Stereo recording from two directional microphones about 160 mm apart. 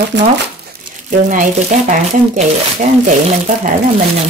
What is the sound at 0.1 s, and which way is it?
Speech, 90° right.